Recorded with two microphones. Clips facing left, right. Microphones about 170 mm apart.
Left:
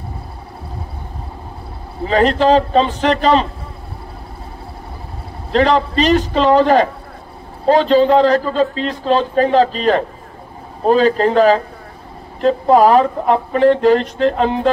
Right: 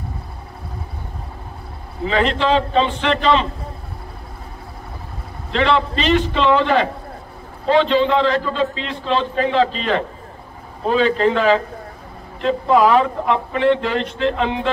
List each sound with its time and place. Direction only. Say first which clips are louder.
2.0 s a man's voice: left 5 dB; 40° left (ahead or behind)
5.5 s a man's voice: left 4 dB; 40° left (ahead or behind)